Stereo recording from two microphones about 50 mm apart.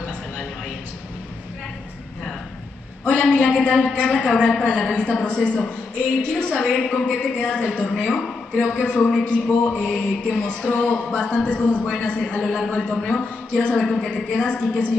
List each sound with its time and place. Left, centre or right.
3.1 s a sound: centre
4.2 s a woman's voice: left
8.7 s a woman's voice: left
12.4 s a man's voice: centre
14.1 s a man's voice: centre